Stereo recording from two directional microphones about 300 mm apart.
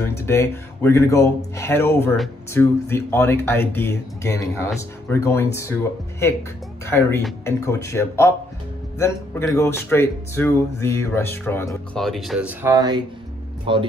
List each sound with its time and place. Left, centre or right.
0.2 s speech: centre
6.9 s speech: centre